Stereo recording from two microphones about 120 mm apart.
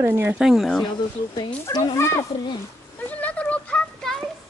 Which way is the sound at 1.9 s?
25° left (ahead or behind).